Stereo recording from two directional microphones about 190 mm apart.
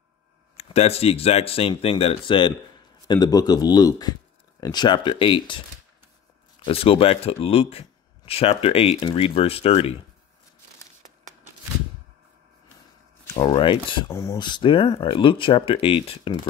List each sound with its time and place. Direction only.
0.6 s speech: 35° left (ahead or behind)
6.6 s speech: 30° left (ahead or behind)
13.4 s speech: 25° left (ahead or behind)
14.1 s speech: 15° left (ahead or behind)